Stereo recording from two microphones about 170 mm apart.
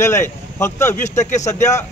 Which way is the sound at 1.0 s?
45° left (ahead or behind).